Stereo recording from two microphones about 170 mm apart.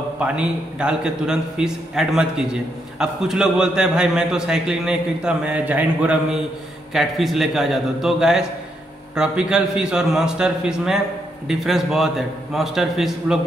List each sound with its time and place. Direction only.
0.2 s a man's voice: 5° right (ahead or behind)